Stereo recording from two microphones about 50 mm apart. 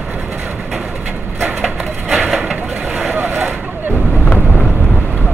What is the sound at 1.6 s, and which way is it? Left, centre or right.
Wood, centre.